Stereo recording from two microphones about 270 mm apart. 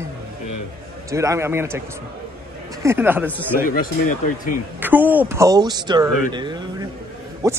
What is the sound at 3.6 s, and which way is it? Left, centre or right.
Speech, left.